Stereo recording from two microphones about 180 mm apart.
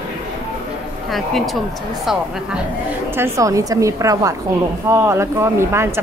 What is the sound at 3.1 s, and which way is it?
A woman's voice, 15° right (ahead or behind).